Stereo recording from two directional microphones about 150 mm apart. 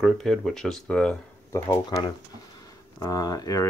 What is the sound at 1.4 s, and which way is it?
Speech, 15° left (ahead or behind).